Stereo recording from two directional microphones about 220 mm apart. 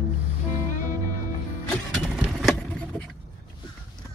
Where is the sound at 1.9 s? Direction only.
Centre (ahead or behind).